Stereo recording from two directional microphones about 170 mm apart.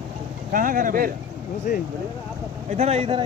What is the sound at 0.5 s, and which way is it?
Speech, 55° right (ahead or behind).